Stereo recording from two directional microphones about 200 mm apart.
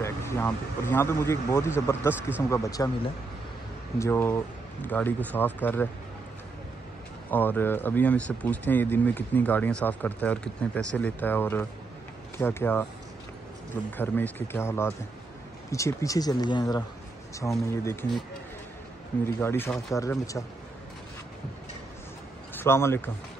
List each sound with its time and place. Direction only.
0.0 s speech: 10° left (ahead or behind)
4.0 s speech: 10° left (ahead or behind)
7.2 s speech: 10° left (ahead or behind)
13.9 s speech: 10° left (ahead or behind)
19.2 s speech: 10° left (ahead or behind)
22.5 s speech: 10° left (ahead or behind)